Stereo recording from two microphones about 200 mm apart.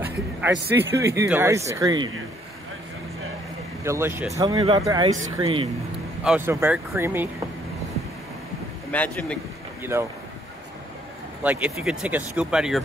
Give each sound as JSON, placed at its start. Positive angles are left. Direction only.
{"t": 0.0, "sound": "speech", "side_deg": -10}
{"t": 3.8, "sound": "speech", "side_deg": -15}
{"t": 6.2, "sound": "speech", "side_deg": -10}
{"t": 8.9, "sound": "speech", "side_deg": 5}
{"t": 11.4, "sound": "speech", "side_deg": -5}